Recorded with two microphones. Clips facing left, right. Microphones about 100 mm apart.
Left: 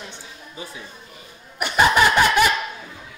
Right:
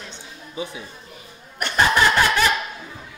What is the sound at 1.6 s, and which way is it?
Snicker, 10° left (ahead or behind).